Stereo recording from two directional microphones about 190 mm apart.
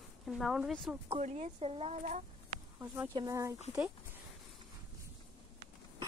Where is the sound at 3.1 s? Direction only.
15° right (ahead or behind).